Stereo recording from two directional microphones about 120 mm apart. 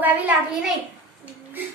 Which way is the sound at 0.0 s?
15° right (ahead or behind).